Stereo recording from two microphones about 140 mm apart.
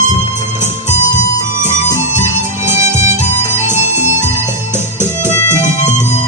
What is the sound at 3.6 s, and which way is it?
Music, 60° left (ahead or behind).